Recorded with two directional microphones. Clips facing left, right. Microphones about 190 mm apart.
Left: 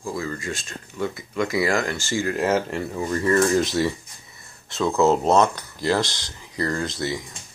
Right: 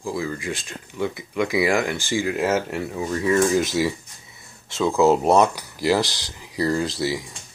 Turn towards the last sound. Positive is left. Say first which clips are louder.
# right 3 dB
turn(degrees=-5)  # may be behind; listen again after turning